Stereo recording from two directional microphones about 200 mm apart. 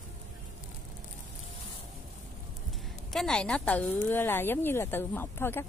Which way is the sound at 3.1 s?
5° left (ahead or behind).